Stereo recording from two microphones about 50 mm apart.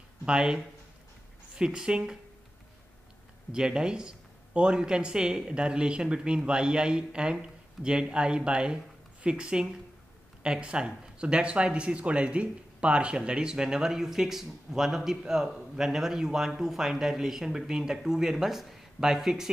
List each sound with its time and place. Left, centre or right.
0.2 s speech: centre
3.5 s speech: centre